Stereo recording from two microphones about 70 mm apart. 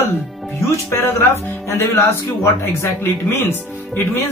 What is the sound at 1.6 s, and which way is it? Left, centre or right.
Speech, left.